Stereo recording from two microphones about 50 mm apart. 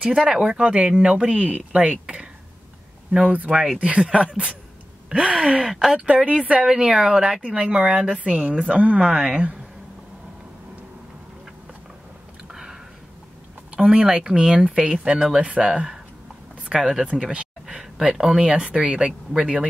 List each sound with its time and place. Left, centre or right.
0.0 s speech: centre
5.7 s speech: centre
5.9 s speech: right
12.4 s a sound: centre
13.7 s speech: centre